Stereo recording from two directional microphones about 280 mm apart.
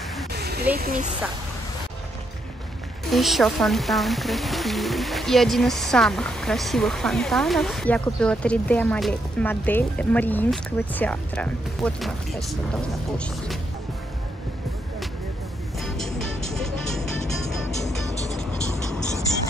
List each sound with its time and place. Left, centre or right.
0.3 s a sound: right
0.7 s speech: right
3.1 s speech: centre
15.8 s music: centre